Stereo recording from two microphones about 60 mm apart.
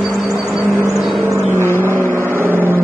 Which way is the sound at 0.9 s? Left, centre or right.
Centre.